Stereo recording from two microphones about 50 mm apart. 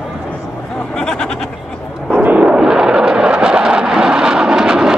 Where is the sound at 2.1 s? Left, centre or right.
Right; by 4.9 s centre.